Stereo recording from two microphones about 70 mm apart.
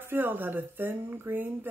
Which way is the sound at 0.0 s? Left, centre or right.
Right.